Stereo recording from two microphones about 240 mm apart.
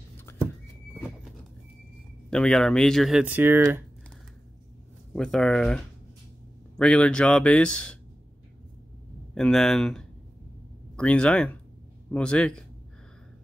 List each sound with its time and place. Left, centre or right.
2.3 s speech: centre
5.1 s speech: centre
9.3 s speech: centre